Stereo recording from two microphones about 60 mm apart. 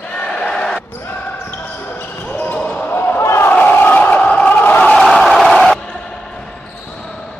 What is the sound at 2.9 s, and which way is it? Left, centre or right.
Basketball bounce, left.